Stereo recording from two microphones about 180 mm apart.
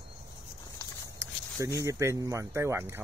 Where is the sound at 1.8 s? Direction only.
15° right (ahead or behind).